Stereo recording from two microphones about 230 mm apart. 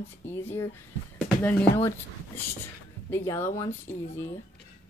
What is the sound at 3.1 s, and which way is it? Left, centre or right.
Speech, centre.